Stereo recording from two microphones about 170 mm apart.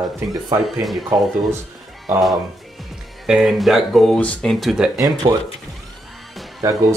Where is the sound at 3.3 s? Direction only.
Centre (ahead or behind).